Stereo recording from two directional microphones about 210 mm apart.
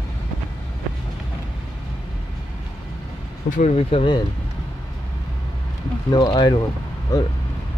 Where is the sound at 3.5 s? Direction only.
35° left (ahead or behind).